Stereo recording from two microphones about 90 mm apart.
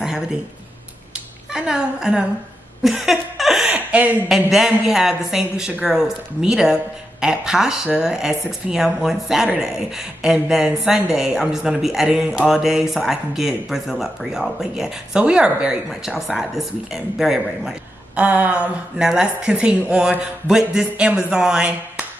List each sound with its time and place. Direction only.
1.1 s a sound: 10° right (ahead or behind)
2.8 s laughter: centre (ahead or behind)
3.7 s chuckle: 20° right (ahead or behind)
4.3 s a woman's voice: 5° right (ahead or behind)
18.1 s a woman's voice: 20° right (ahead or behind)